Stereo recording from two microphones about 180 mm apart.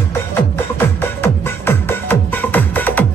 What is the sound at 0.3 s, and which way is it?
Music, 10° left (ahead or behind).